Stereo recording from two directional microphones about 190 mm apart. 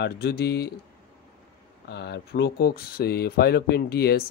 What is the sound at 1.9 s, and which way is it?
Speech, 60° left (ahead or behind).